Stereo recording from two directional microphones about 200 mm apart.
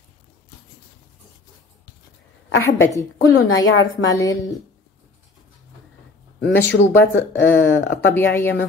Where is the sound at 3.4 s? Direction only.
85° left.